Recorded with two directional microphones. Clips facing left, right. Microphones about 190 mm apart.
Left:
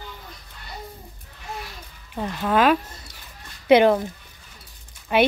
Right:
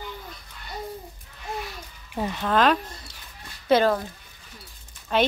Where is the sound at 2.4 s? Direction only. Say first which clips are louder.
Left 3 dB; 5° left (ahead or behind).